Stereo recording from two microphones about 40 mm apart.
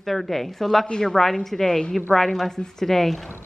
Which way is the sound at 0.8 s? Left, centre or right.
Centre.